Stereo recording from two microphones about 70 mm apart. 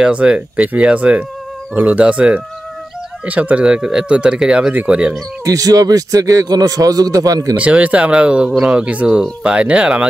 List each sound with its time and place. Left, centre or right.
0.0 s speech: centre
5.4 s a man's voice: right
7.5 s speech: centre